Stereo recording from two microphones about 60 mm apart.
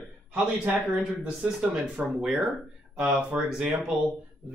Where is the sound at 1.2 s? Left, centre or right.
Centre.